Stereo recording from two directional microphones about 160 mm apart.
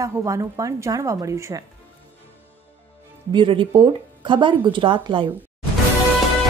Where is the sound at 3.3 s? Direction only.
30° right (ahead or behind).